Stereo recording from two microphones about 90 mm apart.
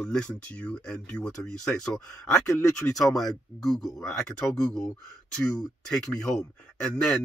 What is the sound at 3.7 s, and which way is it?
Speech, 40° left (ahead or behind).